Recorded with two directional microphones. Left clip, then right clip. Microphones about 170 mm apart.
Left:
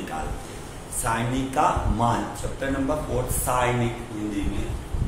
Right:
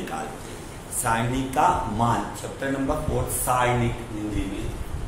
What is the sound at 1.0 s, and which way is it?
A man's voice, 10° right (ahead or behind).